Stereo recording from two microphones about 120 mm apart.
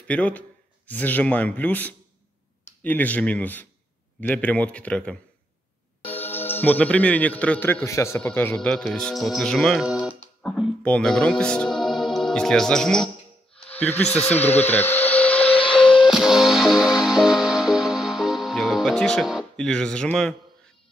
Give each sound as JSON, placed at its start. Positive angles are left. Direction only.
{"t": 0.0, "sound": "a man's voice", "side_deg": 10}
{"t": 10.8, "sound": "speech", "side_deg": 5}
{"t": 13.7, "sound": "speech", "side_deg": 15}
{"t": 15.4, "sound": "a sound", "side_deg": 50}
{"t": 16.0, "sound": "music", "side_deg": -5}
{"t": 19.5, "sound": "a man's voice", "side_deg": 5}